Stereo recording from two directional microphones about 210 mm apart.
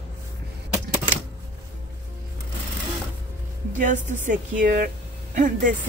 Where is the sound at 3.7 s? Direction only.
35° right (ahead or behind).